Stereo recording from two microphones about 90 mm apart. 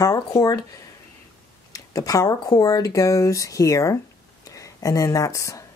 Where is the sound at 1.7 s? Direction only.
40° left (ahead or behind).